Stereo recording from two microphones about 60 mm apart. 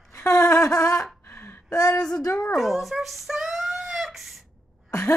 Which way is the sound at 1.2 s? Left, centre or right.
Left.